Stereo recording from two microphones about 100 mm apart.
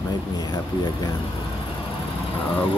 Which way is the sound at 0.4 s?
45° left (ahead or behind).